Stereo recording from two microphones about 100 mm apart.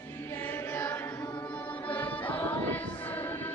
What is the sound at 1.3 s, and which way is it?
Music, 15° left (ahead or behind).